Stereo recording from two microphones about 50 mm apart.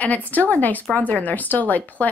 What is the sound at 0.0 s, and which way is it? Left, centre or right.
A woman's voice, left.